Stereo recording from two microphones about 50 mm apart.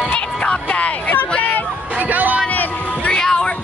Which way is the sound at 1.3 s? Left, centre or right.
Left.